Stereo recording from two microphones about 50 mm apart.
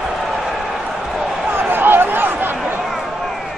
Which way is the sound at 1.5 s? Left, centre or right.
Right.